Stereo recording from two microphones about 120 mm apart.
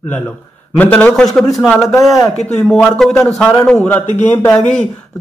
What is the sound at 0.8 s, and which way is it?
Speech, 10° left (ahead or behind).